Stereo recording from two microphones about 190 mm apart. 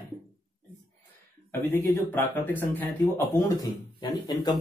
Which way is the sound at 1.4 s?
15° left (ahead or behind).